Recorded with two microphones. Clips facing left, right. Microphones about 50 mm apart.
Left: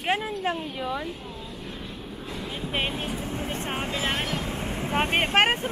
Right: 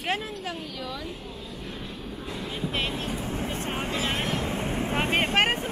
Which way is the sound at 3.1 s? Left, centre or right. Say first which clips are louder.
Even; centre.